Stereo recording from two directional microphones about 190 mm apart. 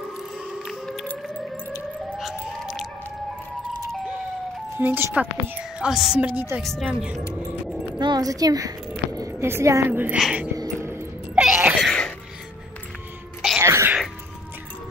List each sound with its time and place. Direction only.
0.6 s siren: centre (ahead or behind)
4.7 s speech: 10° right (ahead or behind)
6.6 s speech: centre (ahead or behind)
7.3 s vehicle: 5° right (ahead or behind)
8.0 s a woman's voice: 20° right (ahead or behind); by 10.5 s 5° right (ahead or behind)
10.6 s music: 15° right (ahead or behind); by 12.1 s centre (ahead or behind)
13.6 s music: 15° right (ahead or behind)